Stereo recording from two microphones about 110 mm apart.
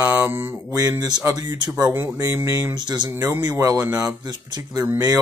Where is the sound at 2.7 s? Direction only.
40° right (ahead or behind).